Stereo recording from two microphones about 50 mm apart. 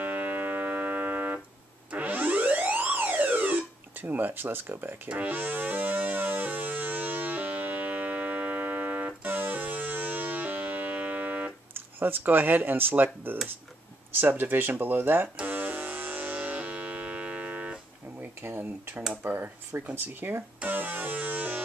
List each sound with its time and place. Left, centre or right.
0.0 s music: right
4.0 s speech: right
5.1 s music: right
11.7 s speech: right
15.4 s music: right
18.2 s speech: right